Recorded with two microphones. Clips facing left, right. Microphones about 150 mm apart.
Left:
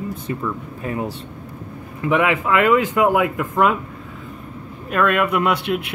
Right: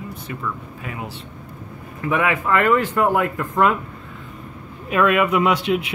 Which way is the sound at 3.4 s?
5° left (ahead or behind).